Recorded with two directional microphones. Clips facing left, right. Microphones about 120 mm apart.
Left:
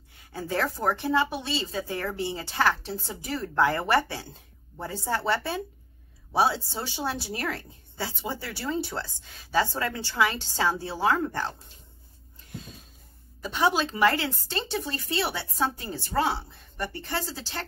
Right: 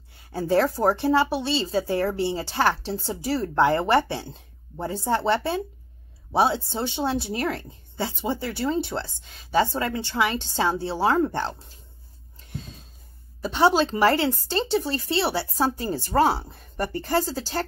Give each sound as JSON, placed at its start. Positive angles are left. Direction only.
{"t": 0.3, "sound": "speech", "side_deg": -30}
{"t": 13.4, "sound": "a woman's voice", "side_deg": -30}